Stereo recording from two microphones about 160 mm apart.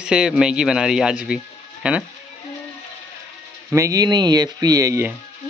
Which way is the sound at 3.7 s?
20° right (ahead or behind).